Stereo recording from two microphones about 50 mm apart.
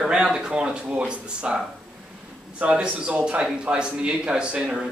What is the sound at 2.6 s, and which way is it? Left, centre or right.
A man's voice, right.